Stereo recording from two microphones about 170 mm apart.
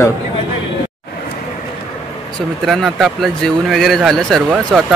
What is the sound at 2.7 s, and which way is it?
Speech, centre (ahead or behind).